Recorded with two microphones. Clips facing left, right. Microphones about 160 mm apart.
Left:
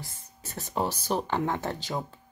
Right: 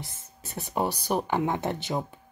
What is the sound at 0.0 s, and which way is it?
Speech, 15° right (ahead or behind).